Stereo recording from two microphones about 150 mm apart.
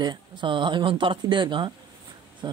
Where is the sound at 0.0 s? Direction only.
30° right (ahead or behind).